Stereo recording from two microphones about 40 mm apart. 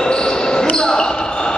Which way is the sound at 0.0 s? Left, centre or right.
Centre.